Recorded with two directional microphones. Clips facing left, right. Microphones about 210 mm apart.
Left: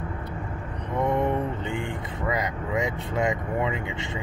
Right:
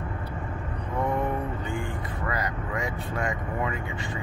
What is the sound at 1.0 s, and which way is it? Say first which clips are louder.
Vehicle: left 4 dB; 20° left (ahead or behind).